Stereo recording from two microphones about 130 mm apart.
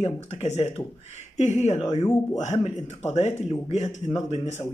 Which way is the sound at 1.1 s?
65° left (ahead or behind).